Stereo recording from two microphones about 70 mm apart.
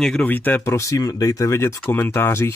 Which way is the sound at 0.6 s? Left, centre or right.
Left.